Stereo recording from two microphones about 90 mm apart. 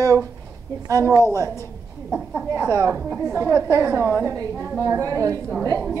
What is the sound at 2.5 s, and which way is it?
A woman's voice, 35° right (ahead or behind).